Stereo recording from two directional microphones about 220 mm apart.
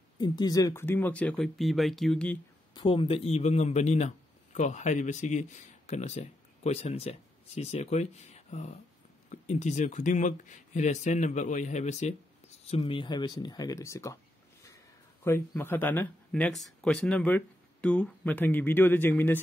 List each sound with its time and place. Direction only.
0.2 s speech: 15° left (ahead or behind)
2.7 s a man's voice: 20° left (ahead or behind)
15.2 s speech: 10° left (ahead or behind)